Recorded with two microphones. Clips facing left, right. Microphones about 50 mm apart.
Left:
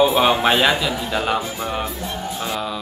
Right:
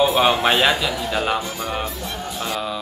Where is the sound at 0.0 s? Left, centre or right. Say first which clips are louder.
Left 1 dB; centre.